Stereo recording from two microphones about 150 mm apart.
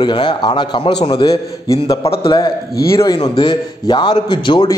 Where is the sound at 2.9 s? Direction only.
20° left (ahead or behind).